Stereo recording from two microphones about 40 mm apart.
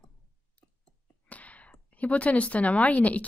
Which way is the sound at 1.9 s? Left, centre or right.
Left.